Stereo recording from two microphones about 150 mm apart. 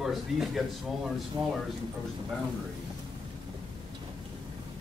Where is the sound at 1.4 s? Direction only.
20° right (ahead or behind).